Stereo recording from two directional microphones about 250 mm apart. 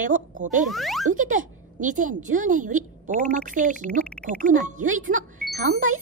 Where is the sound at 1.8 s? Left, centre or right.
Right.